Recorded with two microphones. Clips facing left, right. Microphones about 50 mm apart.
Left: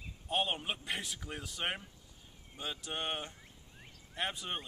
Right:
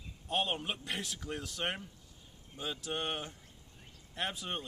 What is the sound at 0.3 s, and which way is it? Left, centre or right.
Speech, centre.